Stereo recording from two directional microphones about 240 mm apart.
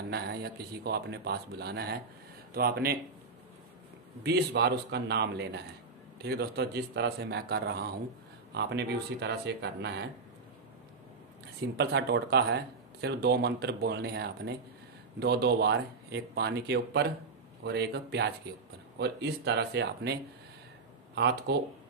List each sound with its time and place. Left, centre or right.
0.1 s speech: right
4.2 s speech: right
11.7 s speech: right